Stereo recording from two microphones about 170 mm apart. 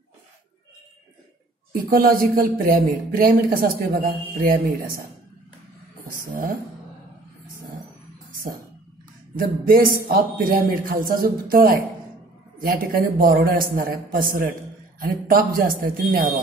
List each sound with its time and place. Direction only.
1.7 s speech: 60° right (ahead or behind)
6.0 s speech: 55° right (ahead or behind)
9.4 s speech: 60° right (ahead or behind)